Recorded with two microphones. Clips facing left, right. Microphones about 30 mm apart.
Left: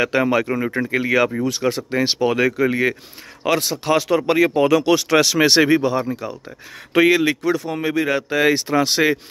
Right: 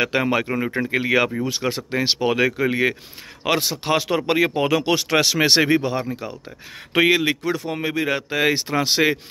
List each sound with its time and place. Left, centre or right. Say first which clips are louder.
0.0 s speech: left 2 dB; right
7.2 s speech: left 3 dB; centre